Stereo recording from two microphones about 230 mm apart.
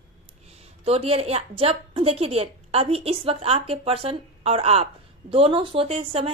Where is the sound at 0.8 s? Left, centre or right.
Right.